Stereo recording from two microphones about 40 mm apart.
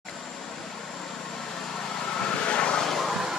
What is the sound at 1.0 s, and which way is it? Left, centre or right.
Vehicle, centre.